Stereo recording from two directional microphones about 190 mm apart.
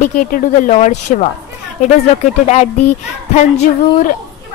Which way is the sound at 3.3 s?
40° left (ahead or behind).